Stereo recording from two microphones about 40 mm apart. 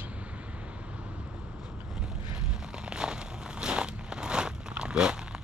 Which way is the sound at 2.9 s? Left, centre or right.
Right.